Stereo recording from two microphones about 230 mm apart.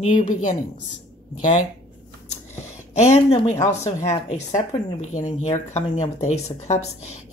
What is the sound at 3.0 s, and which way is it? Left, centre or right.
Speech, left.